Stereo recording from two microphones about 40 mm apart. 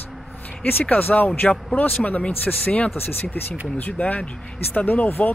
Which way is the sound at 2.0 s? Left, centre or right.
Left.